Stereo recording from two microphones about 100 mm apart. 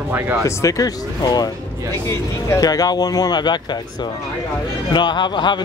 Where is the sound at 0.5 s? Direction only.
30° left (ahead or behind).